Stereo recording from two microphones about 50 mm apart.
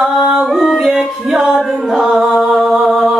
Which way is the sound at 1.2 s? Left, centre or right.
Centre.